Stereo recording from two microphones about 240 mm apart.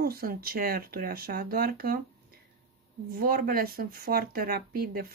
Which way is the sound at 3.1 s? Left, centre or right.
Right.